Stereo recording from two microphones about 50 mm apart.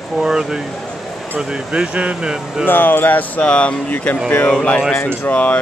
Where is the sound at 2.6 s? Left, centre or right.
Left.